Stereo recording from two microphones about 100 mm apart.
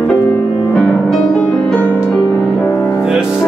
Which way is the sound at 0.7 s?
10° left (ahead or behind).